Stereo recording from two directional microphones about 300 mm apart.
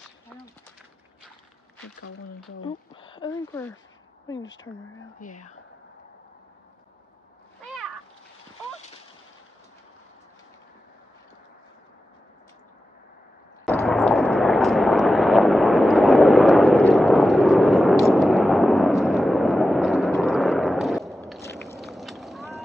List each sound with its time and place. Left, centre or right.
2.6 s speech: centre
5.2 s speech: left
13.7 s a sound: centre
21.3 s vehicle: centre